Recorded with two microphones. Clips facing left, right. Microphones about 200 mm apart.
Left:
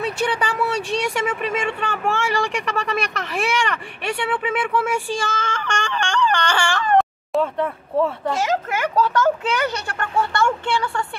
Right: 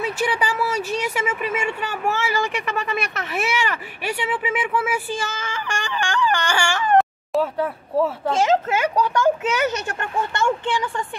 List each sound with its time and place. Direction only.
0.0 s speech: 5° right (ahead or behind)
8.3 s speech: 25° right (ahead or behind)